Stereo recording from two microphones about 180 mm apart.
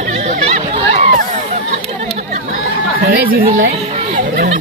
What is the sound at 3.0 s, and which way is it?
Speech, 55° right (ahead or behind).